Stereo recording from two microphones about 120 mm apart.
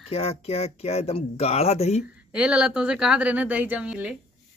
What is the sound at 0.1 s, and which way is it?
Speech, 55° left (ahead or behind).